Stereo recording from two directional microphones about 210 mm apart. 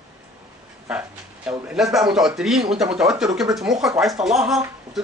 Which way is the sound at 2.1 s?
Centre (ahead or behind).